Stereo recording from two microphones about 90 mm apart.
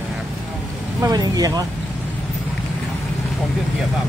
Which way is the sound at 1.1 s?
45° right (ahead or behind).